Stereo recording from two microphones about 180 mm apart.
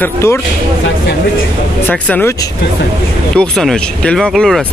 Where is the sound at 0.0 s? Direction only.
15° left (ahead or behind).